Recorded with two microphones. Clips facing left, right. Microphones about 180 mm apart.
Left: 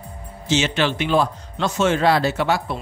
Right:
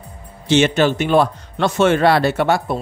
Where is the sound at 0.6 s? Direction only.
50° right (ahead or behind).